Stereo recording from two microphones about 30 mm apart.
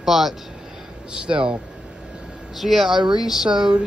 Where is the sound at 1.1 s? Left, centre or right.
Right.